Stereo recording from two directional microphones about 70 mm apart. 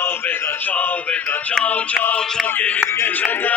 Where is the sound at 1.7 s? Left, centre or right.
Centre.